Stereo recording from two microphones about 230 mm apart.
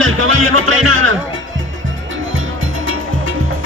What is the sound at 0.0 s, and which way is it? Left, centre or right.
Music, right.